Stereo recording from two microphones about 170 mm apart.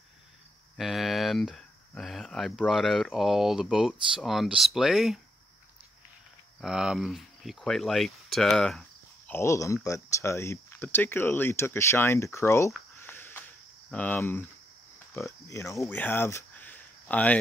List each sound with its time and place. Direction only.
0.7 s speech: centre (ahead or behind)
6.6 s speech: 5° right (ahead or behind)
9.3 s speech: 15° left (ahead or behind)
12.9 s cricket: 15° left (ahead or behind)
15.4 s speech: 20° left (ahead or behind)